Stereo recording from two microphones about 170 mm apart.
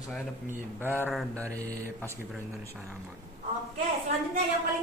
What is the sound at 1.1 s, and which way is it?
Mantra, 10° left (ahead or behind).